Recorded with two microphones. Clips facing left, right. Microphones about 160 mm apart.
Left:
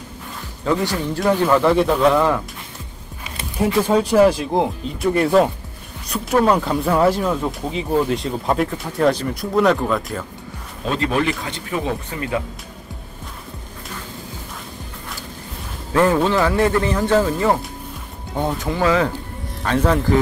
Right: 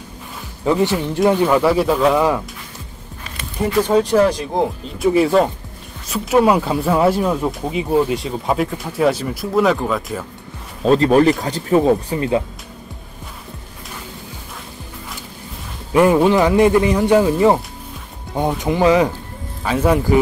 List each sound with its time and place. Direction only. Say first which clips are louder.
0.7 s speech: right 3 dB; 15° right (ahead or behind)
3.3 s music: left 1 dB; 5° left (ahead or behind)
4.0 s speech: left 1 dB; 10° left (ahead or behind)
10.9 s speech: right 8 dB; 40° right (ahead or behind)
15.9 s speech: right 4 dB; 15° right (ahead or behind)
18.6 s speech: right 5 dB; 20° right (ahead or behind)